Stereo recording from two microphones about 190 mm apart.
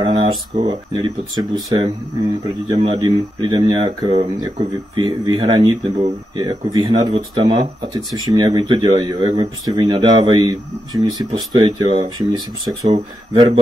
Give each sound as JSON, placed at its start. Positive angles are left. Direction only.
{"t": 0.0, "sound": "speech", "side_deg": -25}